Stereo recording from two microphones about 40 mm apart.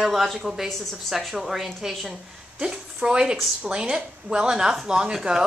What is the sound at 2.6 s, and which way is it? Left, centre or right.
A woman's voice, right.